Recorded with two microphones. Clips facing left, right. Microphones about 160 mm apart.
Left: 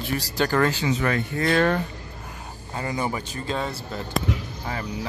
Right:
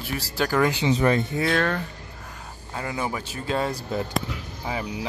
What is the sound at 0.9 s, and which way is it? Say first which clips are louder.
Speech: right 3 dB; 25° right (ahead or behind).